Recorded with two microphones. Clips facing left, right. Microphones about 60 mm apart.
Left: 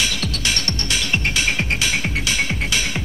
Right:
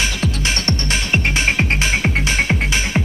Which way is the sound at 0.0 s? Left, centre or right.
Right.